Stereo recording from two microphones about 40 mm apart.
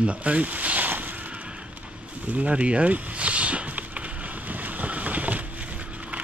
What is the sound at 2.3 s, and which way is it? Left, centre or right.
Walk, right.